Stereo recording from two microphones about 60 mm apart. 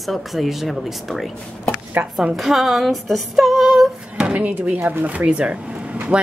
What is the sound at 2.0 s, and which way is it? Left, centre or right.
Speech, right.